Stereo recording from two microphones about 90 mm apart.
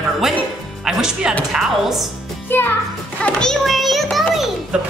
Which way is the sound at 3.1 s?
10° left (ahead or behind).